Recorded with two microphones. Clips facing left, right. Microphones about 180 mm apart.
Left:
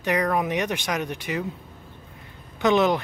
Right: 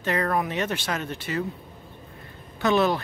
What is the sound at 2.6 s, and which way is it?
Speech, 20° left (ahead or behind).